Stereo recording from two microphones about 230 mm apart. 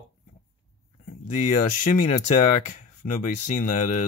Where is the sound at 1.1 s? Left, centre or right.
Left.